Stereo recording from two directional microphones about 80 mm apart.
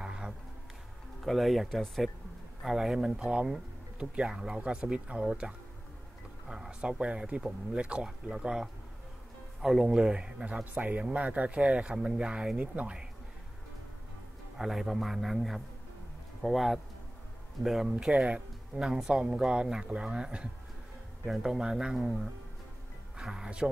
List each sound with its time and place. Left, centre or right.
0.0 s a sound: centre
1.2 s speech: centre
14.6 s speech: centre